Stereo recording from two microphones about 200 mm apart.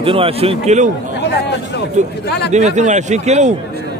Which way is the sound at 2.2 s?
55° left (ahead or behind).